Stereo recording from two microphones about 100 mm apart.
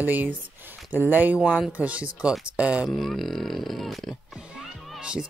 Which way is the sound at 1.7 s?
15° right (ahead or behind).